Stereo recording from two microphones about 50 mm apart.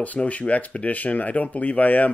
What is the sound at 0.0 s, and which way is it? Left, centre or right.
Speech, left.